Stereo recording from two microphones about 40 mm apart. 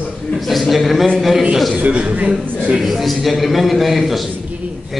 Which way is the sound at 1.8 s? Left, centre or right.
Right.